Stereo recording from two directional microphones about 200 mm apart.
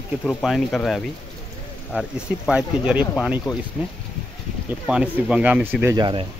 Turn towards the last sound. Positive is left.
turn(degrees=-20)  # may be behind; listen again after turning